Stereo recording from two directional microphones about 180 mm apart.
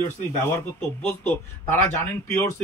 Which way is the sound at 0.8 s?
10° left (ahead or behind).